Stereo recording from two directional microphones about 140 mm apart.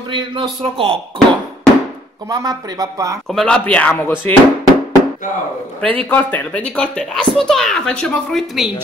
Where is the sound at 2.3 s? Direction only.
25° right (ahead or behind).